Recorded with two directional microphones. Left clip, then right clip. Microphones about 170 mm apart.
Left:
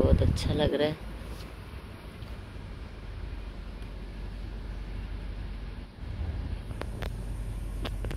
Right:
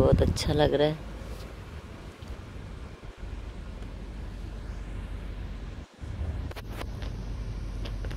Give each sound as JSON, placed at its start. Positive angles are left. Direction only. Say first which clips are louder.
{"t": 0.0, "sound": "speech", "louder": "right 4 dB", "side_deg": -30}
{"t": 0.6, "sound": "speech", "louder": "right 3 dB", "side_deg": -10}